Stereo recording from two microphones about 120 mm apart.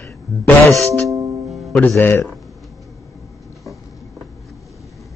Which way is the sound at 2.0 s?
15° left (ahead or behind).